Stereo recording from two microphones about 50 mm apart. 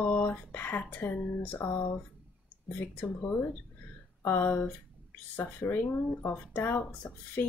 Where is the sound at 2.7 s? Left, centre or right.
Left.